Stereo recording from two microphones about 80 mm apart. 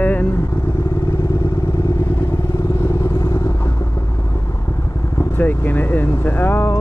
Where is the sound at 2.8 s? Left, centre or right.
Left.